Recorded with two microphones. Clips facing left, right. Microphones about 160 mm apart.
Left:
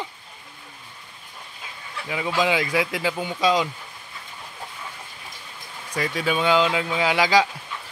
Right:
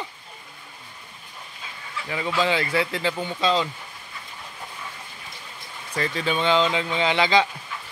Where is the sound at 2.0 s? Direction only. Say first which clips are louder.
Left 1 dB; 10° left (ahead or behind).